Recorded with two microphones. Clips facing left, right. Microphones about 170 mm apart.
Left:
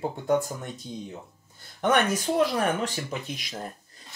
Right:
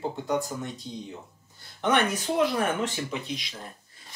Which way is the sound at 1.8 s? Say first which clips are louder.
Left 1 dB; 45° left (ahead or behind).